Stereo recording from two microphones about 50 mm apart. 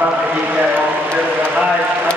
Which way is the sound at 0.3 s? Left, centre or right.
Right.